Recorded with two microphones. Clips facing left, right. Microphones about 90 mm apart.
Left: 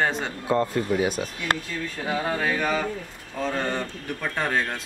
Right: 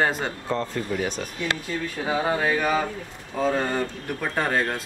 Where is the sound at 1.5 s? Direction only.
45° left (ahead or behind).